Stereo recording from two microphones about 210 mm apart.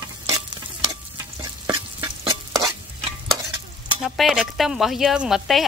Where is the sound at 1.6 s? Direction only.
15° right (ahead or behind).